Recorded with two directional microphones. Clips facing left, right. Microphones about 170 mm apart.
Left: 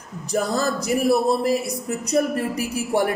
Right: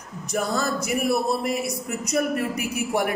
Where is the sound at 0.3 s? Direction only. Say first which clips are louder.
Left 3 dB; 35° left (ahead or behind).